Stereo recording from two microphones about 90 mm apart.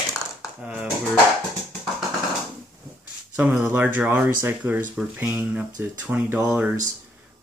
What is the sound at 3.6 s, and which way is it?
Speech, 20° right (ahead or behind).